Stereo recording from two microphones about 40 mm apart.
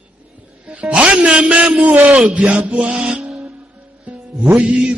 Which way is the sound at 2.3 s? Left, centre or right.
Right.